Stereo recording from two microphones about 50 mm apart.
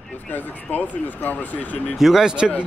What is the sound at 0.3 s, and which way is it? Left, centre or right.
Speech, left.